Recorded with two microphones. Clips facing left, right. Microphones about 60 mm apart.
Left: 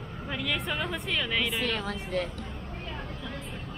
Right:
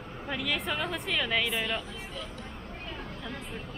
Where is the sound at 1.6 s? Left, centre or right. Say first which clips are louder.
Left 3 dB; left.